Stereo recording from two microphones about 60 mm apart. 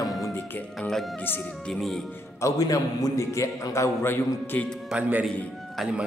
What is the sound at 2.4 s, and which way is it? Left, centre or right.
A man's voice, left.